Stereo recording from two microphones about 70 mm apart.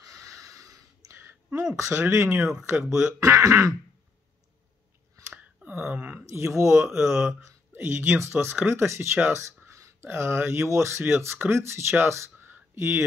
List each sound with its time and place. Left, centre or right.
0.0 s a sound: right
1.8 s speech: right
3.2 s speech: right
5.3 s a sound: right
6.0 s speech: right
6.9 s speech: centre
7.2 s speech: right
10.0 s speech: right